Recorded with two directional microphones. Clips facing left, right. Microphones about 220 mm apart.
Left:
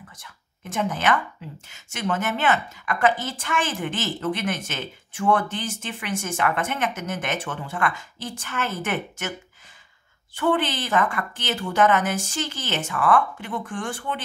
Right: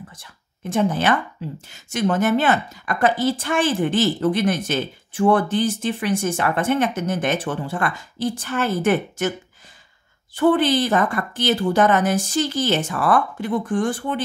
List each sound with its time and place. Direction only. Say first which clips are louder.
0.2 s a woman's voice: right 7 dB; 30° right (ahead or behind)
10.3 s a woman's voice: right 6 dB; 35° right (ahead or behind)